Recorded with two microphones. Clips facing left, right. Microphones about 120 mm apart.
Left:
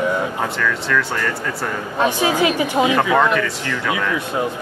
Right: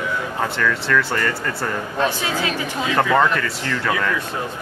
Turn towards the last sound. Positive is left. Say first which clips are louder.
# even
turn(degrees=10)  # may be behind; listen again after turning